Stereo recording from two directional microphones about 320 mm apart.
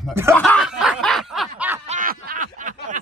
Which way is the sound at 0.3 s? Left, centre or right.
Centre.